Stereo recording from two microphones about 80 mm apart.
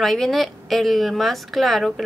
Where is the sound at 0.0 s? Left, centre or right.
Centre.